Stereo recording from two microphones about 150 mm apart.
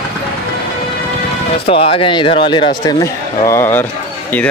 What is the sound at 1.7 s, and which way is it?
Speech, 35° left (ahead or behind).